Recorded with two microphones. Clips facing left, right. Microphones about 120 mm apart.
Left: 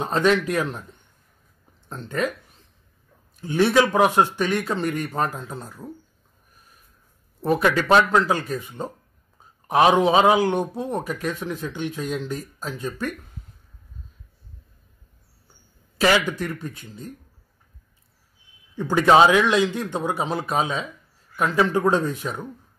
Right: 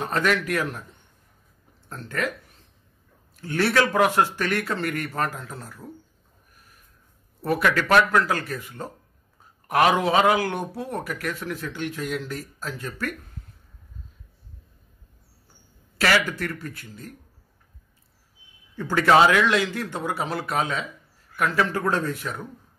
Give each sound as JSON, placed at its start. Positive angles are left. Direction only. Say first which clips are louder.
{"t": 0.0, "sound": "speech", "louder": "left 4 dB", "side_deg": 20}
{"t": 1.9, "sound": "speech", "louder": "left 3 dB", "side_deg": 20}
{"t": 3.3, "sound": "speech", "louder": "left 3 dB", "side_deg": 20}
{"t": 7.4, "sound": "speech", "louder": "left 3 dB", "side_deg": 20}
{"t": 16.0, "sound": "speech", "louder": "left 3 dB", "side_deg": 20}
{"t": 18.8, "sound": "speech", "louder": "left 2 dB", "side_deg": 20}